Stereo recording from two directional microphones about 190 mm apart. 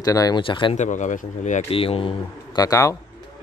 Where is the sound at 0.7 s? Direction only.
40° left (ahead or behind); by 3.0 s 15° left (ahead or behind).